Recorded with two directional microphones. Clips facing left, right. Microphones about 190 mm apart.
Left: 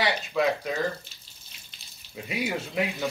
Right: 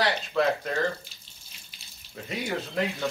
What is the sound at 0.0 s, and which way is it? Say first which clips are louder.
Speech: even; centre (ahead or behind).